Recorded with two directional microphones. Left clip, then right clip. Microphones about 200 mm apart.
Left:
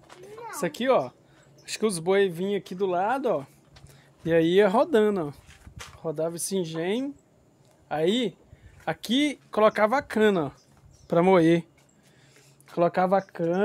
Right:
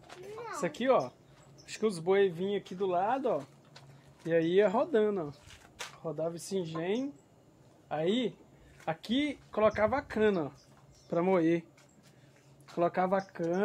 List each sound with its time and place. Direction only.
0.6 s speech: 55° left (ahead or behind)
12.7 s speech: 50° left (ahead or behind)